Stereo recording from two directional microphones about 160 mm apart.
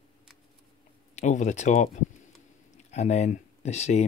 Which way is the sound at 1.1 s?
50° left (ahead or behind).